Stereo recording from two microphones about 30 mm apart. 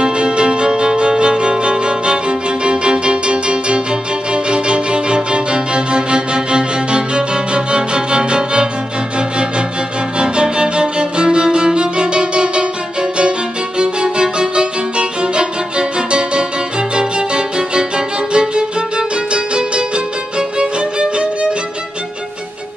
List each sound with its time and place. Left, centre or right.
0.0 s music: right
10.1 s music: right
13.7 s violin: right
16.9 s music: right